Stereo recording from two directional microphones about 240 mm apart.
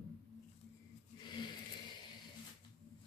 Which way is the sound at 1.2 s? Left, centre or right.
Centre.